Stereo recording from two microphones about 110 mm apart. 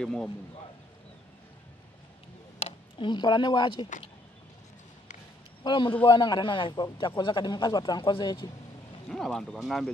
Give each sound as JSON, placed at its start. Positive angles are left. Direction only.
{"t": 0.0, "sound": "speech", "side_deg": 5}
{"t": 2.6, "sound": "speech", "side_deg": 45}
{"t": 5.6, "sound": "a man's voice", "side_deg": 45}
{"t": 9.1, "sound": "speech", "side_deg": 5}